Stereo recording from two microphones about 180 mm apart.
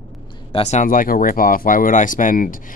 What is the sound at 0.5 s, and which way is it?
Speech, 40° left (ahead or behind).